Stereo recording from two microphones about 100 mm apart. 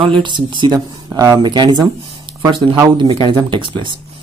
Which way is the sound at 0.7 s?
40° right (ahead or behind).